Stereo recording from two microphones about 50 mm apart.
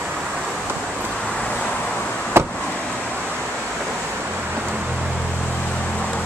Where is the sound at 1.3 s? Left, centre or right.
Centre.